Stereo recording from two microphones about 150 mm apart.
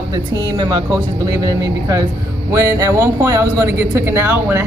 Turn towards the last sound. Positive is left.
turn(degrees=-15)  # may be behind; listen again after turning